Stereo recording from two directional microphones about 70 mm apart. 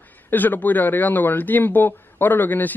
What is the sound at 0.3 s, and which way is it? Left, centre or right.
A man's voice, left.